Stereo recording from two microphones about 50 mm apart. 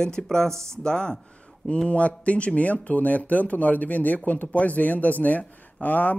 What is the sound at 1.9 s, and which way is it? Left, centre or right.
Speech, left.